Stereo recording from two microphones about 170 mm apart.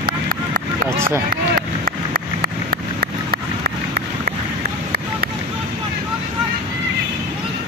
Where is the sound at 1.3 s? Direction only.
55° right (ahead or behind).